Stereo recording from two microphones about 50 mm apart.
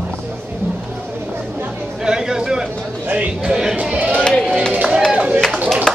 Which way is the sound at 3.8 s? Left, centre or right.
Right.